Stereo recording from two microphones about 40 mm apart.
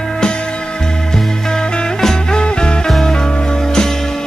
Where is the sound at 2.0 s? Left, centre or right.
Centre.